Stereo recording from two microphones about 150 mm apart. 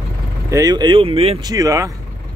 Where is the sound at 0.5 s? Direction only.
25° right (ahead or behind).